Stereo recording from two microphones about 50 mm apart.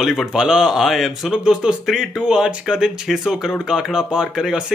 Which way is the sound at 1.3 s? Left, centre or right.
Centre.